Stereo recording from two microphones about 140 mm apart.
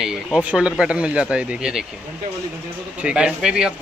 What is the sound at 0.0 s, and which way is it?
Speech, 5° right (ahead or behind).